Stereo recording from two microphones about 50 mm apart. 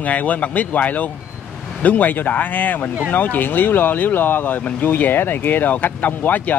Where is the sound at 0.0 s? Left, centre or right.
Left.